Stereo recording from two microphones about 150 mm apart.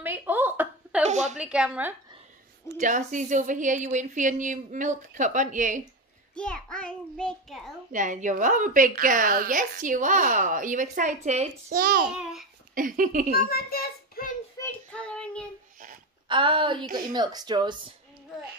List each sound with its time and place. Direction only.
0.0 s a sound: 15° right (ahead or behind)
1.0 s a sound: 50° right (ahead or behind)
1.4 s a woman's voice: 5° right (ahead or behind)
2.8 s a woman's voice: 55° right (ahead or behind)
6.3 s child singing: 5° left (ahead or behind)
7.9 s a woman's voice: 60° right (ahead or behind)
11.7 s a child's voice: 90° right
12.1 s child singing: 5° right (ahead or behind)
12.7 s a woman's voice: 65° right (ahead or behind)
13.3 s a child's voice: 90° left
14.6 s child singing: 10° left (ahead or behind)
16.3 s a woman's voice: 35° right (ahead or behind)